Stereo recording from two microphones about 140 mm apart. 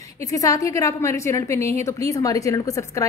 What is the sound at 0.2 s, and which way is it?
A woman's voice, 25° left (ahead or behind).